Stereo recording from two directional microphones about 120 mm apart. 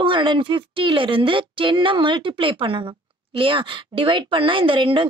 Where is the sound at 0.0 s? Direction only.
40° right (ahead or behind).